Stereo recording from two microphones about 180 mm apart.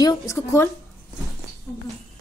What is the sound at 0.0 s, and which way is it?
Speech, 15° left (ahead or behind).